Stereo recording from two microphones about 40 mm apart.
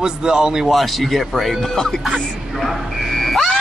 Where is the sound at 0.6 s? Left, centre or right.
Centre.